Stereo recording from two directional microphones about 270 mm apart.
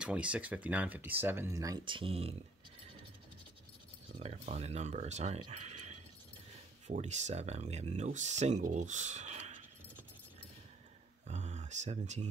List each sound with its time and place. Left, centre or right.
0.0 s speech: centre; by 2.3 s right
4.2 s speech: right
11.2 s a sound: right